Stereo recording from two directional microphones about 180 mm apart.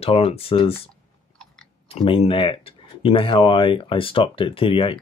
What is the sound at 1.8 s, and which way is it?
Speech, 30° left (ahead or behind).